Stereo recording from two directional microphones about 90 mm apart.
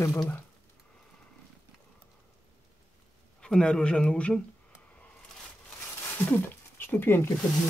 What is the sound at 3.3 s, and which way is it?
Speech, 10° left (ahead or behind).